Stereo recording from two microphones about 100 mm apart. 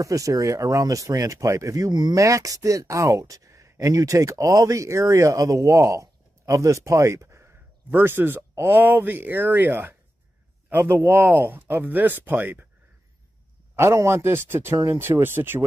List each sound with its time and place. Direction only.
0.0 s speech: 35° right (ahead or behind)
2.1 s speech: 30° right (ahead or behind)
11.1 s speech: 20° right (ahead or behind)
13.7 s speech: 25° right (ahead or behind)